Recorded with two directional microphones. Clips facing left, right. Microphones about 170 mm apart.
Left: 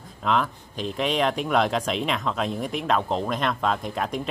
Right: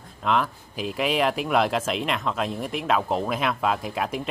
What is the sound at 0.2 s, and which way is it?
Speech, centre (ahead or behind).